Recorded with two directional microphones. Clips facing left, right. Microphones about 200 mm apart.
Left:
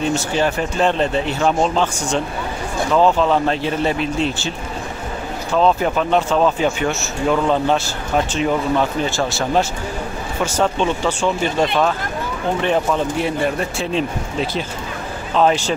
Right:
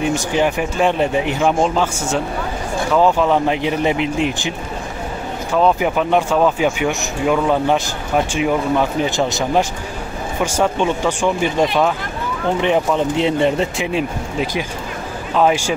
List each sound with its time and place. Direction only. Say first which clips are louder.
0.0 s speech: right 1 dB; 15° right (ahead or behind)